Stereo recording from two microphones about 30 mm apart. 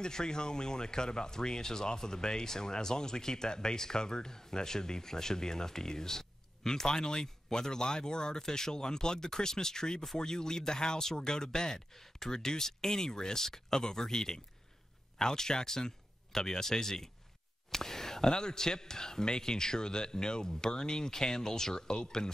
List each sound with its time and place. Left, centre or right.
0.0 s speech: left
17.6 s a sound: centre
18.3 s speech: left